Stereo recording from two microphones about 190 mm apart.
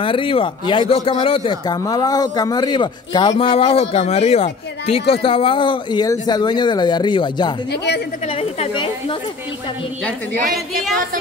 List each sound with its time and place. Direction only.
0.0 s speech: 25° left (ahead or behind)
7.7 s a woman's voice: 60° left (ahead or behind)
8.3 s speech: 30° left (ahead or behind)